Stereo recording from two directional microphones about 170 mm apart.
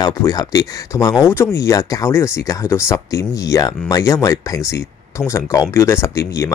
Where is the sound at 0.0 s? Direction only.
20° left (ahead or behind).